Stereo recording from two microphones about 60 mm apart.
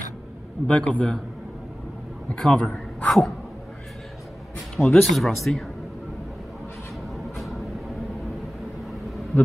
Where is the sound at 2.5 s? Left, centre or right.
Centre.